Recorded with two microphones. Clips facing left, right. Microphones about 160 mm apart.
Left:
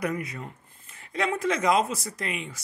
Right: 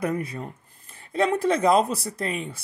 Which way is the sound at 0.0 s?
30° right (ahead or behind).